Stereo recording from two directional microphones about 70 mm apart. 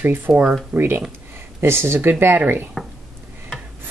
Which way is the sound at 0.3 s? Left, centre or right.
Centre.